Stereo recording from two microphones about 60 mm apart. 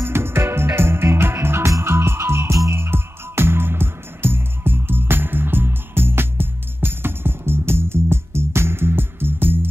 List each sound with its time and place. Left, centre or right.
0.0 s music: right